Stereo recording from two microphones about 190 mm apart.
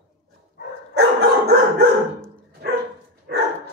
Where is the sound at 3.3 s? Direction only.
60° right (ahead or behind).